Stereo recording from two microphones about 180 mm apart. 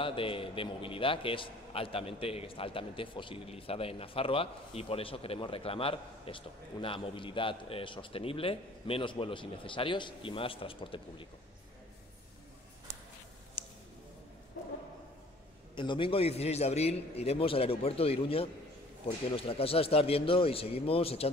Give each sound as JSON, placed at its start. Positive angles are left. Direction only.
{"t": 0.0, "sound": "a man's voice", "side_deg": 30}
{"t": 13.6, "sound": "a sound", "side_deg": 30}
{"t": 15.7, "sound": "a man's voice", "side_deg": 25}